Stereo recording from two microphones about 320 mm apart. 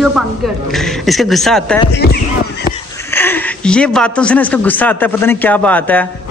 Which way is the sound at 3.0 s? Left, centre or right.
Centre.